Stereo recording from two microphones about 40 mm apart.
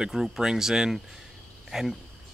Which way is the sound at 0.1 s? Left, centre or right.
Centre.